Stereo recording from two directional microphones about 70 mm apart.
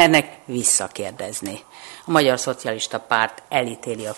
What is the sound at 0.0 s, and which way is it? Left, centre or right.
Speech, right.